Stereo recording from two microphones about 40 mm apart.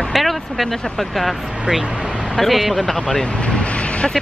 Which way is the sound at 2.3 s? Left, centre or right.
Centre.